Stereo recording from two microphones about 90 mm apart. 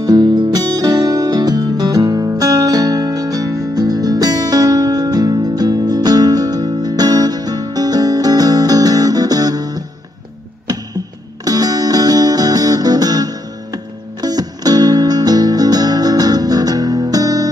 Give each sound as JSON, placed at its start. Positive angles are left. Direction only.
{"t": 0.0, "sound": "music", "side_deg": -50}
{"t": 11.4, "sound": "guitar", "side_deg": -45}
{"t": 14.2, "sound": "music", "side_deg": -45}